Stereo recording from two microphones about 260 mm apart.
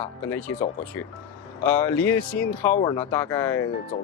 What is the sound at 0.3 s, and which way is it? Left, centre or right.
Speech, centre.